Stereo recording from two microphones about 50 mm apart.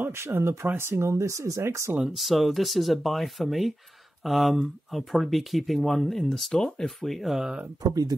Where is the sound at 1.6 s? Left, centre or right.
Right.